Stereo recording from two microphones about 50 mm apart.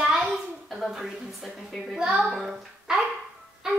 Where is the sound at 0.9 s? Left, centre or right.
Centre.